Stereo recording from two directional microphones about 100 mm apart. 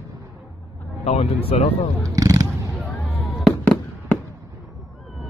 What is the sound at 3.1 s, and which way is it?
Fireworks, 5° left (ahead or behind).